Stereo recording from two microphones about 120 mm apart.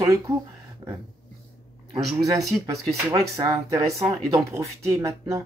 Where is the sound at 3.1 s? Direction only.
30° right (ahead or behind).